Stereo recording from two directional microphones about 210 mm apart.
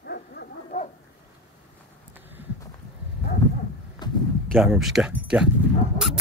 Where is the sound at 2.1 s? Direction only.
10° right (ahead or behind).